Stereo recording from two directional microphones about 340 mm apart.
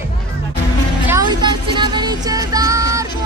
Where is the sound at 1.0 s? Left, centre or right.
Centre.